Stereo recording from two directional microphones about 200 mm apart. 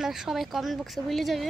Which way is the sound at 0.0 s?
Centre (ahead or behind).